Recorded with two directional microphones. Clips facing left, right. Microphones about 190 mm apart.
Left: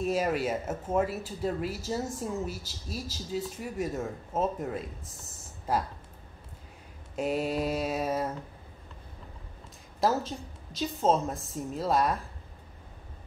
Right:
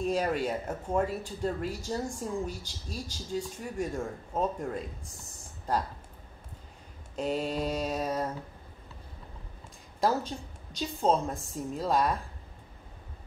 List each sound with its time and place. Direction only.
0.0 s a woman's voice: 5° left (ahead or behind)
5.7 s mantra: 5° left (ahead or behind)
7.2 s mantra: 10° left (ahead or behind)
9.9 s a woman's voice: centre (ahead or behind)